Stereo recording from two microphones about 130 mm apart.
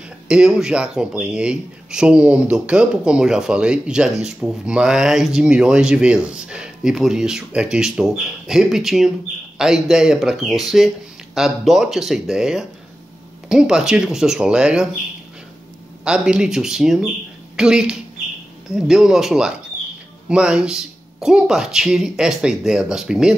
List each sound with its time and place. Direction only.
0.3 s speech: 5° right (ahead or behind)
16.0 s speech: 5° right (ahead or behind)